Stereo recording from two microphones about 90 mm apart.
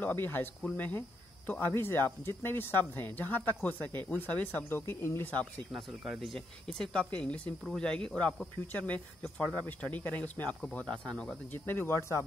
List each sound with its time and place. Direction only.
0.0 s speech: 20° left (ahead or behind)
5.7 s speech: 5° right (ahead or behind)
11.5 s speech: 25° left (ahead or behind)